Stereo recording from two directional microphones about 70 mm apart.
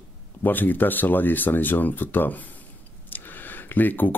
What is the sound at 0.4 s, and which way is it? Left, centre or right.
Speech, left.